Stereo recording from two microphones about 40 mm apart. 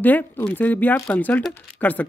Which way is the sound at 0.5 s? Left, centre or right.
Left.